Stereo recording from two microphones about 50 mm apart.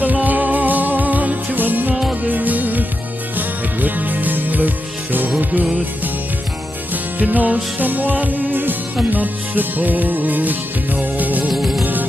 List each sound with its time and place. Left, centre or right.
0.0 s music: right
7.2 s music: right
11.5 s music: centre
11.8 s music: right